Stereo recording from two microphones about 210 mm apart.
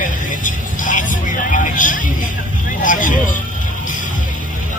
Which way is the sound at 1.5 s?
40° left (ahead or behind).